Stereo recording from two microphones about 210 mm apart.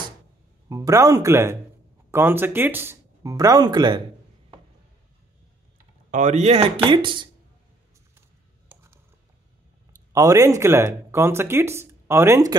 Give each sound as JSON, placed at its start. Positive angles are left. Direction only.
{"t": 0.7, "sound": "speech", "side_deg": -15}
{"t": 6.0, "sound": "speech", "side_deg": -35}
{"t": 8.6, "sound": "a sound", "side_deg": -10}
{"t": 10.1, "sound": "speech", "side_deg": -15}